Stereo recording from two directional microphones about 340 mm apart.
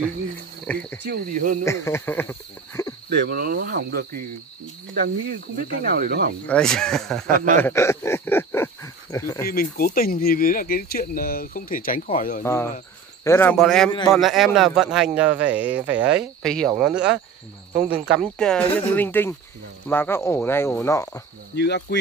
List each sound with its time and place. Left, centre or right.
0.7 s speech: centre
1.0 s speech: right
1.6 s speech: centre
3.1 s speech: right
5.9 s speech: right
6.4 s speech: centre
7.2 s speech: right
7.6 s speech: centre
9.5 s speech: left
13.2 s speech: centre
21.5 s speech: left